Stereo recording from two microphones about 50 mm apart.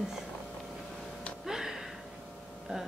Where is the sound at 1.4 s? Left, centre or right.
Centre.